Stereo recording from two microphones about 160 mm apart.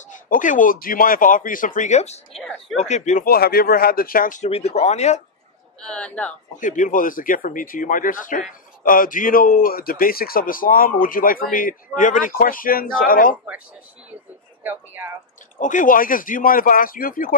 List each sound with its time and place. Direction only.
0.1 s a man's voice: 55° left (ahead or behind)
3.3 s speech: 70° left (ahead or behind)
4.5 s speech: 40° left (ahead or behind)
5.8 s speech: 5° left (ahead or behind)
6.6 s a man's voice: 55° left (ahead or behind)
14.6 s speech: 10° right (ahead or behind)
15.6 s a man's voice: 55° left (ahead or behind)